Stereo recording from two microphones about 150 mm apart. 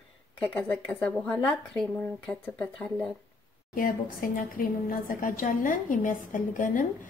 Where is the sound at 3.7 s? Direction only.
70° left (ahead or behind).